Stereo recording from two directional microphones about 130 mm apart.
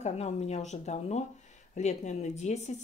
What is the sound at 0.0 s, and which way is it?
Speech, 55° left (ahead or behind).